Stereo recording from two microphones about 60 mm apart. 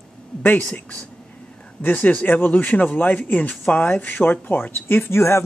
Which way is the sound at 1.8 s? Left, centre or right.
Left.